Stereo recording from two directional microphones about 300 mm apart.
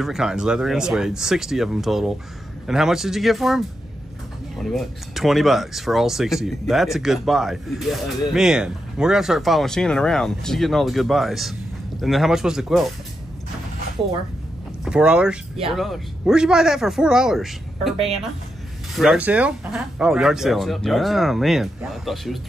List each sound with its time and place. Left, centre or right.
0.0 s speech: centre
14.9 s speech: centre
18.9 s speech: centre